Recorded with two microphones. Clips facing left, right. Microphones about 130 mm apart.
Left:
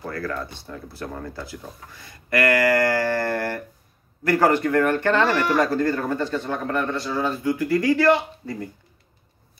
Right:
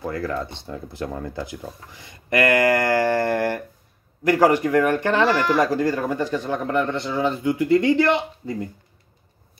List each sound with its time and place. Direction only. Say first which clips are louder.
0.1 s a man's voice: left 1 dB; 20° right (ahead or behind)